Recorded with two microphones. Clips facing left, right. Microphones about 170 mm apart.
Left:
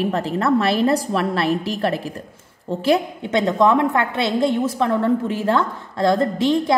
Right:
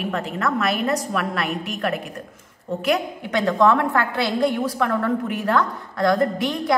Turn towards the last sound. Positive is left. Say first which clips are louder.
# left 4 dB
turn(degrees=25)  # may be behind; listen again after turning